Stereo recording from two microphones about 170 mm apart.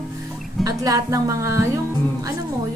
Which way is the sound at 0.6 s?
20° right (ahead or behind).